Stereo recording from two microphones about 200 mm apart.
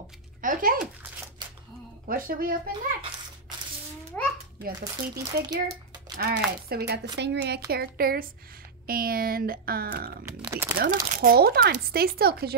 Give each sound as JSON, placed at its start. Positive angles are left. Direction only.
{"t": 0.4, "sound": "a child's voice", "side_deg": -45}
{"t": 2.0, "sound": "speech", "side_deg": -45}
{"t": 4.1, "sound": "a sound", "side_deg": 5}
{"t": 4.6, "sound": "speech", "side_deg": -50}
{"t": 10.4, "sound": "speech", "side_deg": -10}
{"t": 11.1, "sound": "speech", "side_deg": -45}